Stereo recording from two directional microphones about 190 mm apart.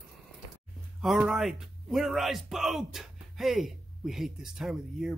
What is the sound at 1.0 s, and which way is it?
Speech, 5° right (ahead or behind).